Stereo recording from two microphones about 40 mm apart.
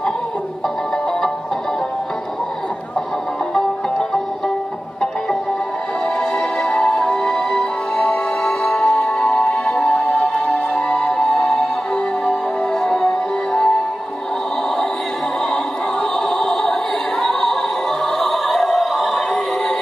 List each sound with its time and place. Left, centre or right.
6.6 s music: centre
12.8 s music: centre
15.5 s music: centre